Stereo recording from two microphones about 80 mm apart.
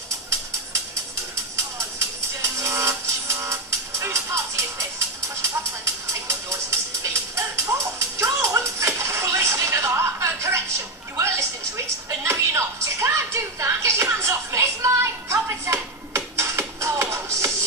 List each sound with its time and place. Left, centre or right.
2.4 s music: right
11.1 s television: right
15.4 s music: right